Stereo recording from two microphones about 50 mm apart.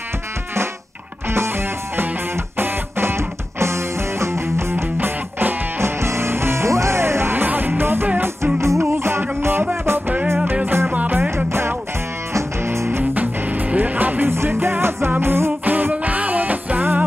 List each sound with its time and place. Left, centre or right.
2.5 s music: right
4.9 s music: right
5.8 s music: right
7.4 s music: right
8.5 s music: right
10.5 s music: right
11.1 s music: right
13.1 s music: right
14.3 s music: right
15.6 s music: right